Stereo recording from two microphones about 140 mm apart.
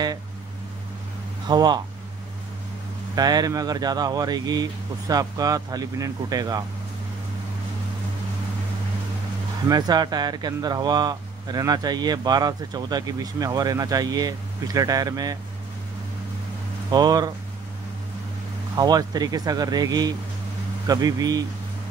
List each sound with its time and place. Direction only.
1.5 s speech: 30° right (ahead or behind)
3.2 s speech: 30° right (ahead or behind)
9.7 s speech: 30° right (ahead or behind)
16.9 s speech: 30° right (ahead or behind)
18.8 s speech: 30° right (ahead or behind)